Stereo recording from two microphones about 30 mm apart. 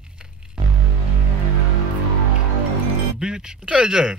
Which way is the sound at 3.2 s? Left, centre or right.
Right.